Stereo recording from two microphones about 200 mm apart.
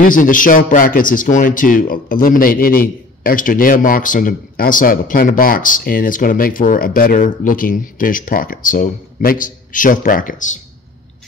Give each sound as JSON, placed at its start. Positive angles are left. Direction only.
{"t": 0.0, "sound": "speech", "side_deg": 40}